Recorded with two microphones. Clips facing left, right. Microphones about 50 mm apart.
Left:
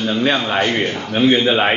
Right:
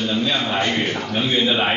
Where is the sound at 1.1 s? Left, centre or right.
Left.